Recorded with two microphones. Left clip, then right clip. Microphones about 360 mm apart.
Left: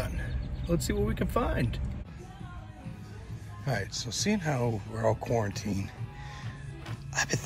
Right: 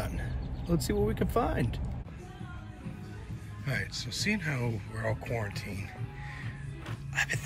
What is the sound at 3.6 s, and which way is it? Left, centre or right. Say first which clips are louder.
Speech: left 2 dB; centre.